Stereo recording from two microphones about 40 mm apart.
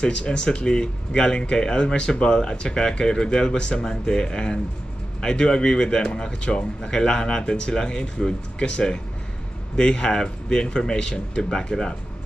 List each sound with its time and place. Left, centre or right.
0.0 s speech: left